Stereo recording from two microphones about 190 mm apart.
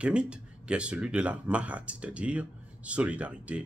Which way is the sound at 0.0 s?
5° right (ahead or behind).